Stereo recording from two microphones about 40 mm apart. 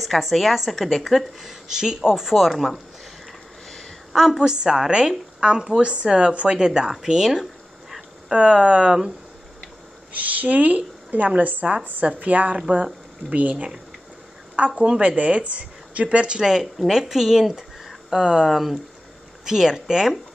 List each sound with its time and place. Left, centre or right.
0.0 s a woman's voice: centre
4.1 s a woman's voice: centre
4.4 s a woman's voice: centre
10.1 s speech: right
14.8 s speech: right
16.7 s a woman's voice: centre
18.5 s a woman's voice: centre
19.4 s a woman's voice: centre